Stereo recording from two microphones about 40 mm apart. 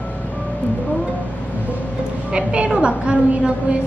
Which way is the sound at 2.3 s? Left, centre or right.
Right.